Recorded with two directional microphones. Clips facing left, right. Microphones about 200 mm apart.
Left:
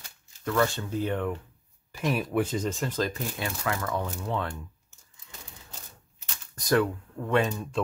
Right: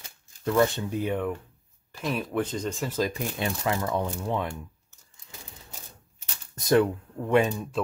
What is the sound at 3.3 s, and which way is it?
Speech, 20° right (ahead or behind).